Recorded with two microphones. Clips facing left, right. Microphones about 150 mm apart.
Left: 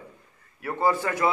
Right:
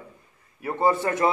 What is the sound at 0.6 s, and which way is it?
Speech, 20° right (ahead or behind).